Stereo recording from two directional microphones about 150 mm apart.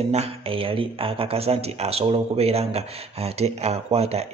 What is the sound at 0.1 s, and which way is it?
Speech, 40° right (ahead or behind).